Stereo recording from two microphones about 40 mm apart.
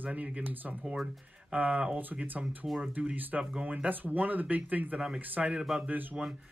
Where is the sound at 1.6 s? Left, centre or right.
Right.